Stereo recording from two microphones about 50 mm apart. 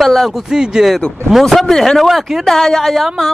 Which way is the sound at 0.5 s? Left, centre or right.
Centre.